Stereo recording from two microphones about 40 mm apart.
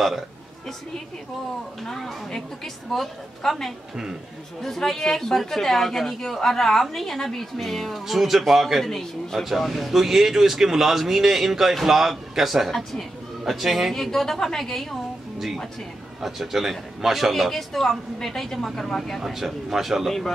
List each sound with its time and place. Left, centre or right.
1.9 s speech: centre
3.9 s a man's voice: centre
4.6 s a woman's voice: centre
13.9 s a woman's voice: centre
15.3 s music: centre
16.2 s a man's voice: centre
17.3 s a woman's voice: centre